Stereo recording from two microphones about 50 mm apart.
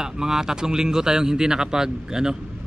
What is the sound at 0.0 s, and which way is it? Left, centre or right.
Speech, centre.